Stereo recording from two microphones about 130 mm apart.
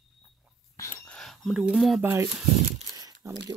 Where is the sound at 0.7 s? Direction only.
20° left (ahead or behind).